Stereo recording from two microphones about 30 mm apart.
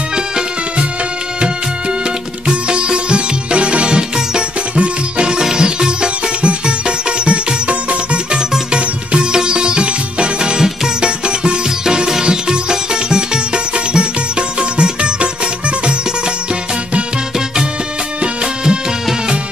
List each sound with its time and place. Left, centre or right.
2.4 s music: right
18.2 s music: right